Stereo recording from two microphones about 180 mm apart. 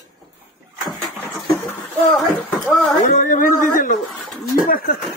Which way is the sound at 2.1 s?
Centre (ahead or behind).